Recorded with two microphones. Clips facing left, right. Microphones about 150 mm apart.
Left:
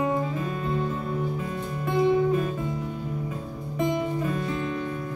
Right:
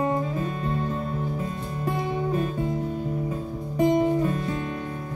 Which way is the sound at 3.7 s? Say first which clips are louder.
Right 5 dB; 40° right (ahead or behind).